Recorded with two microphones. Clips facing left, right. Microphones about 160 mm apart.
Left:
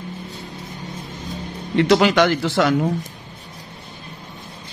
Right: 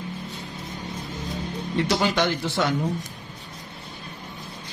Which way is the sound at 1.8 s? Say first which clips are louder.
Left 8 dB; 85° left.